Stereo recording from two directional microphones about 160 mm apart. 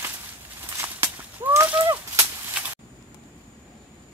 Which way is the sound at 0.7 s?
15° right (ahead or behind).